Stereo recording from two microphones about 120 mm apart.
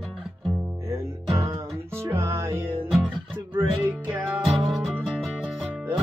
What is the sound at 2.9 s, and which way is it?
Music, centre (ahead or behind).